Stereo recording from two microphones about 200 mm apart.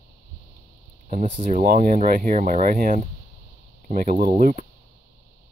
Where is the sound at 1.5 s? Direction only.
45° right (ahead or behind).